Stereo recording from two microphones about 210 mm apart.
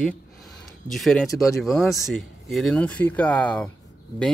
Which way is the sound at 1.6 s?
Centre (ahead or behind).